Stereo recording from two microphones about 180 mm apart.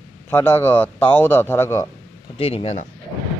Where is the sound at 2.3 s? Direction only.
35° left (ahead or behind).